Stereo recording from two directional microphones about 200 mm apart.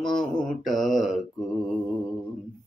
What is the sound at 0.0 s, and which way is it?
Mantra, 20° left (ahead or behind).